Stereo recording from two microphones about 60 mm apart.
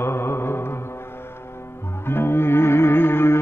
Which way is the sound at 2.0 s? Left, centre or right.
Left.